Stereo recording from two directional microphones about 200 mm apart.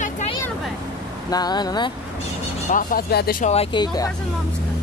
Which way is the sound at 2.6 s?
45° left (ahead or behind).